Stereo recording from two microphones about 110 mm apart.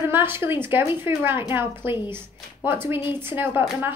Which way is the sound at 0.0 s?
20° right (ahead or behind).